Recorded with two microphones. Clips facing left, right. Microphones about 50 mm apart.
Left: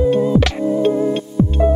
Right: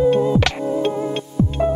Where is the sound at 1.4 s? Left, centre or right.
Left.